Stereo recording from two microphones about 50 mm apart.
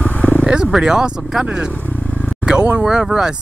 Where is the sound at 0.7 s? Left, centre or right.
Centre.